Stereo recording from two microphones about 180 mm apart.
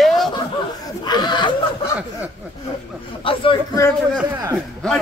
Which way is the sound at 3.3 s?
30° left (ahead or behind).